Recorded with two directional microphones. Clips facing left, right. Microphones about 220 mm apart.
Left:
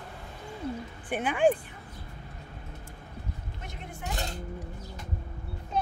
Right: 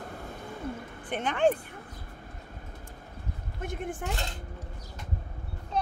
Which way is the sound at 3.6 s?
50° right (ahead or behind).